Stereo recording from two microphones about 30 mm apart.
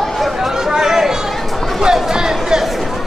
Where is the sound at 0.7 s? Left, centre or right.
Centre.